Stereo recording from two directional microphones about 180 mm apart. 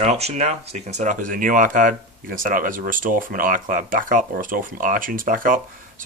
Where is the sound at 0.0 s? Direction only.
40° right (ahead or behind).